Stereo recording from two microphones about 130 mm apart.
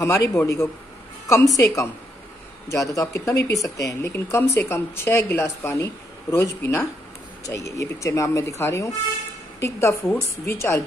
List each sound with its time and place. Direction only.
0.0 s a woman's voice: 25° left (ahead or behind)